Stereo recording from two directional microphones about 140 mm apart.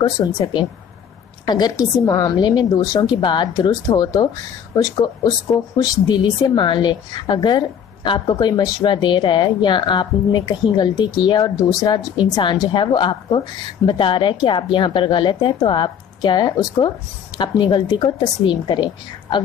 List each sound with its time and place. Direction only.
0.0 s a woman's voice: 35° left (ahead or behind)